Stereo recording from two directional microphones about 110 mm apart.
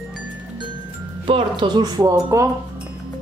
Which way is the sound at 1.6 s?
40° right (ahead or behind).